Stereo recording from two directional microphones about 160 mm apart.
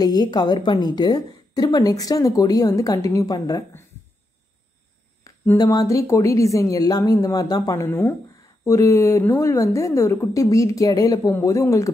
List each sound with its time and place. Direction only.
0.0 s a woman's voice: 25° left (ahead or behind)
5.2 s a sound: 15° left (ahead or behind)
5.6 s a woman's voice: 20° left (ahead or behind)